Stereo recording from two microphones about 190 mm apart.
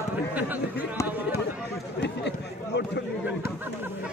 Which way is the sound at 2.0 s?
65° left (ahead or behind).